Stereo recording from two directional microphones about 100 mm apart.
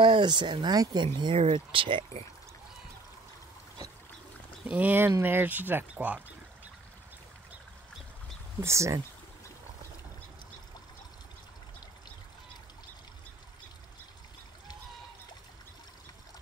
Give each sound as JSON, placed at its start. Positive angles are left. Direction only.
{"t": 0.0, "sound": "speech", "side_deg": -50}
{"t": 1.4, "sound": "speech", "side_deg": -65}
{"t": 4.6, "sound": "speech", "side_deg": -15}
{"t": 8.5, "sound": "speech", "side_deg": -30}